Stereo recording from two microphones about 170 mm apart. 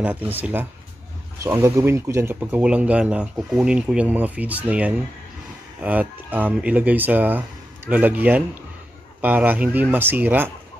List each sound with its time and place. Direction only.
0.0 s speech: 10° right (ahead or behind)
2.4 s speech: 5° right (ahead or behind)